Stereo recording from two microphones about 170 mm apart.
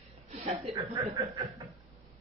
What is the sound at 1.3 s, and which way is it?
Speech, 20° right (ahead or behind).